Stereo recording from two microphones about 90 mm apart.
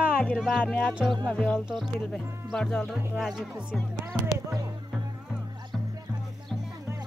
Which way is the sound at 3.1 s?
5° right (ahead or behind).